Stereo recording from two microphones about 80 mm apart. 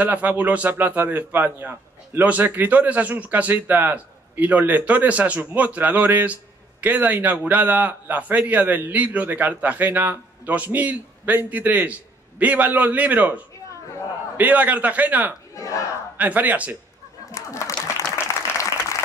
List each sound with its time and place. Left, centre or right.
0.0 s a man's voice: centre
15.5 s battle cry: left
16.2 s speech: centre
17.3 s a sound: left
18.1 s applause: left